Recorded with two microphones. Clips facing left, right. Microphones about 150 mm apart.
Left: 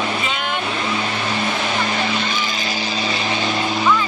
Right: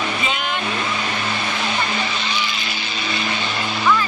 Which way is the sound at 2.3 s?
40° left (ahead or behind).